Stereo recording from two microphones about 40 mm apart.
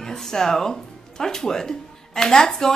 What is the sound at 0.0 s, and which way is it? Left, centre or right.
Speech, centre.